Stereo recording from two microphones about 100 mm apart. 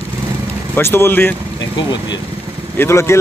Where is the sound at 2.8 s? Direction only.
25° left (ahead or behind).